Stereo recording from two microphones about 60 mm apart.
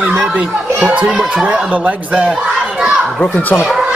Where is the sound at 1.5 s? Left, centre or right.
Right.